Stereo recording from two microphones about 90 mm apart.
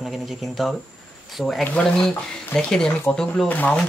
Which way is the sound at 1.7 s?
10° left (ahead or behind).